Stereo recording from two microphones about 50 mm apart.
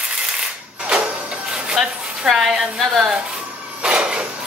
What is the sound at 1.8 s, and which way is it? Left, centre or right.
Speech, centre.